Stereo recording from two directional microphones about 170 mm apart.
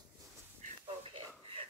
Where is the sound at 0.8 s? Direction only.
35° right (ahead or behind).